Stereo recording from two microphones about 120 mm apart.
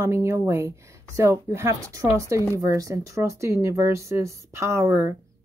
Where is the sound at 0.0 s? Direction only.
25° right (ahead or behind).